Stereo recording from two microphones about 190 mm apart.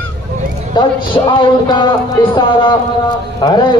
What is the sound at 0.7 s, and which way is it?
Speech, 25° left (ahead or behind).